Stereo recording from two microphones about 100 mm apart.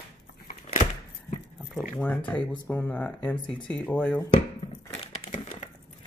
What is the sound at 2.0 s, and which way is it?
Speech, 15° left (ahead or behind).